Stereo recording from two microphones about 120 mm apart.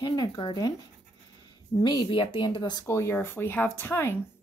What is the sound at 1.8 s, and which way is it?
Speech, 35° left (ahead or behind).